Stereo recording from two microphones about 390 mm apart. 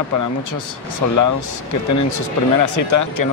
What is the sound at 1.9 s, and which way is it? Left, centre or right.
Speech, left.